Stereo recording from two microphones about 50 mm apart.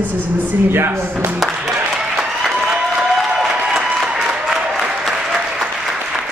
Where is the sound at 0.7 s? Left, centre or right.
Right.